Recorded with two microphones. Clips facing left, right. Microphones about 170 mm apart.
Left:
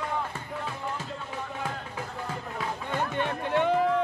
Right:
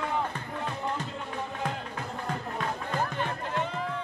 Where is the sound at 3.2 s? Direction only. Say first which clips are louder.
Left 5 dB; 65° left (ahead or behind).